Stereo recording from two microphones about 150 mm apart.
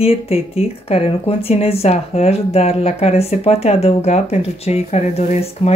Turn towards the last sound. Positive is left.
turn(degrees=45)  # may be behind; listen again after turning